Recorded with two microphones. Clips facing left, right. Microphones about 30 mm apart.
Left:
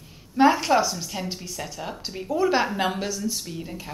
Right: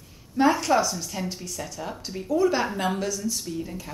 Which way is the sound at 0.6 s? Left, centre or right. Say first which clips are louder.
Left 1 dB; centre.